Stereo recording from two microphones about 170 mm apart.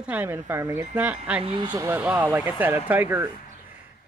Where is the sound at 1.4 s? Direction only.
30° right (ahead or behind).